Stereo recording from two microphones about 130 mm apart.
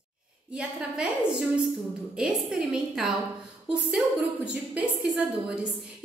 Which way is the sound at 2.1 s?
5° right (ahead or behind).